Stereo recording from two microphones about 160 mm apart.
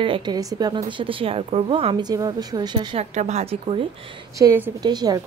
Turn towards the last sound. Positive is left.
turn(degrees=-25)  # may be behind; listen again after turning